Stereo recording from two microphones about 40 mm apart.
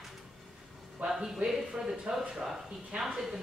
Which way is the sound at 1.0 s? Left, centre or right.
Centre.